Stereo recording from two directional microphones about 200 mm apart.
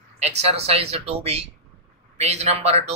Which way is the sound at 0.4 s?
30° right (ahead or behind).